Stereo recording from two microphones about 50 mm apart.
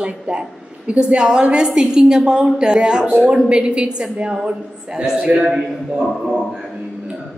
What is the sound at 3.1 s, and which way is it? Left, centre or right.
A woman's voice, right.